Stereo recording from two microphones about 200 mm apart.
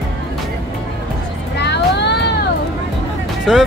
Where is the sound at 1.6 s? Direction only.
60° left (ahead or behind).